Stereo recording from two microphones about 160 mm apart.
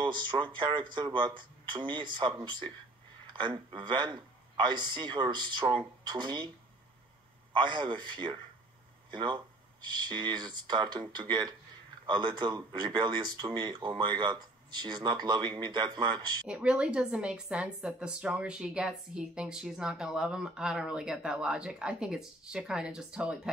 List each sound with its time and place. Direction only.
0.0 s speech: 30° right (ahead or behind)
7.5 s speech: 30° right (ahead or behind)
16.4 s a woman's voice: 5° right (ahead or behind)